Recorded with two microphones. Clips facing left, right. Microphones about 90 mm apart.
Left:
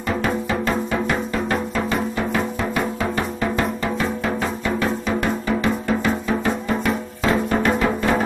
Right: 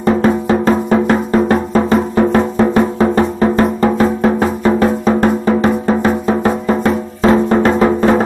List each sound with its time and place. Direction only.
0.0 s music: 40° right (ahead or behind)